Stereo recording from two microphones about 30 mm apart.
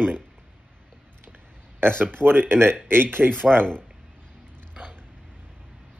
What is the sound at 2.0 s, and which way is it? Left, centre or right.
Speech, left.